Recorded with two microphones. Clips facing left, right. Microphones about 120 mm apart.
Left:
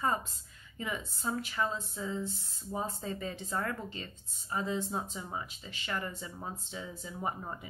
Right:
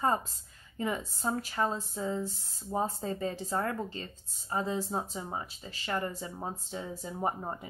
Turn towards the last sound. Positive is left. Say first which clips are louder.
# right 4 dB
turn(degrees=-35)  # may be behind; listen again after turning